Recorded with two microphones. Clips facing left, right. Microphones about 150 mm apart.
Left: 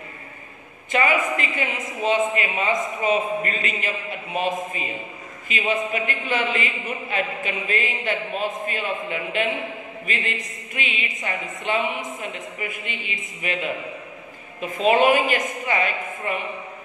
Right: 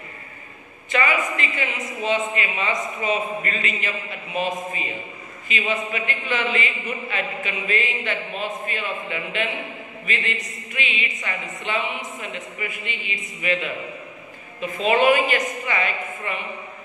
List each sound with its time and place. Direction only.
0.9 s a woman's voice: 45° left (ahead or behind)
14.7 s a woman's voice: 45° left (ahead or behind)